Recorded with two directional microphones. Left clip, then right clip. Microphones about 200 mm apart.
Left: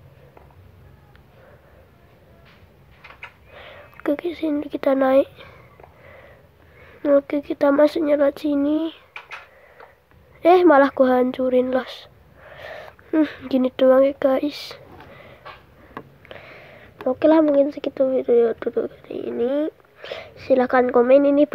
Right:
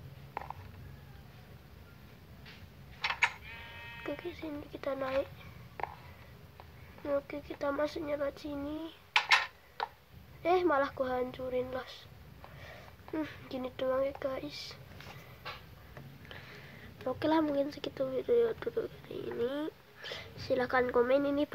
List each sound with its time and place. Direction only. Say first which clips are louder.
4.0 s speech: left 18 dB; 45° left (ahead or behind)
7.0 s speech: left 17 dB; 40° left (ahead or behind)
10.4 s speech: left 16 dB; 45° left (ahead or behind)
16.3 s sniff: left 9 dB; 15° left (ahead or behind)
17.1 s speech: left 15 dB; 15° left (ahead or behind)